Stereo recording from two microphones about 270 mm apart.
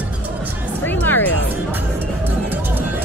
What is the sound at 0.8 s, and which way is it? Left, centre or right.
Music, centre.